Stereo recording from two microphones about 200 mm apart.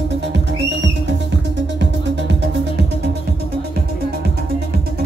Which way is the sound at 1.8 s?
60° right (ahead or behind).